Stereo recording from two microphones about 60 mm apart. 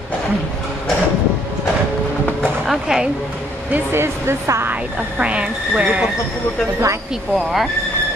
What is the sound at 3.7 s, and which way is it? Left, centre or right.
Speech, right.